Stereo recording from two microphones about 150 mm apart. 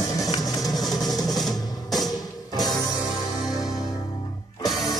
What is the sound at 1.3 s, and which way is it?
Drum, centre (ahead or behind).